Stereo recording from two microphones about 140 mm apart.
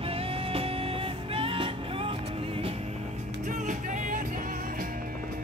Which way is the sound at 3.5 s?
65° right (ahead or behind).